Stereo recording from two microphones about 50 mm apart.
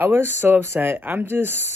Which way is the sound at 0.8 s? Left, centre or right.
Right.